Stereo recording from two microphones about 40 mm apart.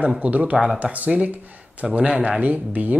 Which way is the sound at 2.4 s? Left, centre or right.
Right.